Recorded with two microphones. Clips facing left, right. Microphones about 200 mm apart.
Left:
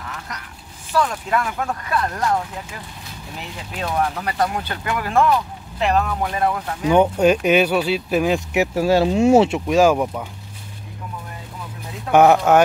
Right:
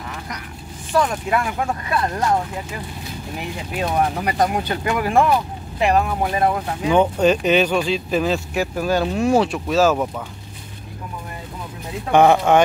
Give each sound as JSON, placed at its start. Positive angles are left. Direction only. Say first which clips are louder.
{"t": 0.9, "sound": "speech", "louder": "right 1 dB", "side_deg": -10}
{"t": 3.3, "sound": "speech", "louder": "right 4 dB", "side_deg": -15}
{"t": 6.9, "sound": "speech", "louder": "left 1 dB", "side_deg": 10}
{"t": 8.5, "sound": "speech", "louder": "left 6 dB", "side_deg": 25}
{"t": 9.7, "sound": "speech", "louder": "left 2 dB", "side_deg": 15}
{"t": 12.1, "sound": "speech", "louder": "left 1 dB", "side_deg": 5}